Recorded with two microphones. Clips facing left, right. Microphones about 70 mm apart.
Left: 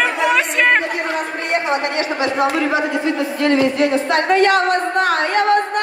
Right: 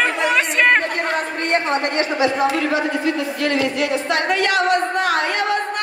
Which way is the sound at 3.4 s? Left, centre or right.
Left.